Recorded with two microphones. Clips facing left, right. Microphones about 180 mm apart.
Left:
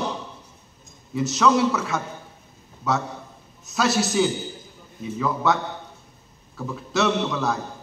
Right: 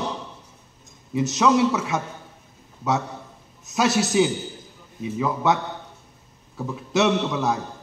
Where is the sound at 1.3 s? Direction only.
15° right (ahead or behind).